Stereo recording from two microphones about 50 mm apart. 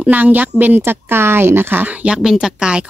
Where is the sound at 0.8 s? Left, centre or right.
Right.